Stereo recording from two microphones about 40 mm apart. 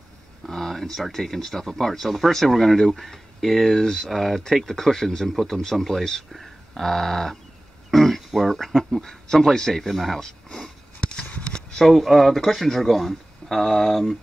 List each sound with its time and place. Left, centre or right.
0.5 s speech: centre
6.3 s a sound: centre
7.9 s speech: centre
10.2 s speech: centre
11.7 s speech: centre